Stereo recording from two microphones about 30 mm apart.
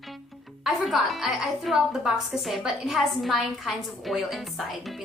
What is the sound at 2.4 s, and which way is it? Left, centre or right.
A woman's voice, centre.